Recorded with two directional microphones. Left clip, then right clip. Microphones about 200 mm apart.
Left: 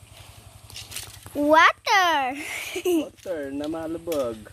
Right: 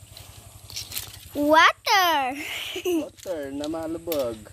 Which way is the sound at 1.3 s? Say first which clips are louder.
Even; 5° left (ahead or behind).